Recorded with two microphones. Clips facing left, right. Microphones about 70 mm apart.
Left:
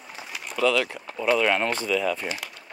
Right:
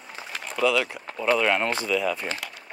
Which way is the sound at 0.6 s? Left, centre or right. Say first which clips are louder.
Even; centre.